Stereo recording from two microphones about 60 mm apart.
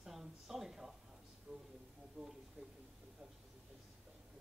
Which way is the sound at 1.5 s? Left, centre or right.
Centre.